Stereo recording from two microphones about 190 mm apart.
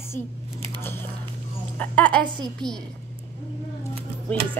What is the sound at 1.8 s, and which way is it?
A woman's voice, 5° left (ahead or behind).